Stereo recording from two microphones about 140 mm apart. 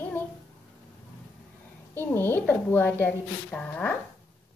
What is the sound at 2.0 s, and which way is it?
A woman's voice, 15° left (ahead or behind).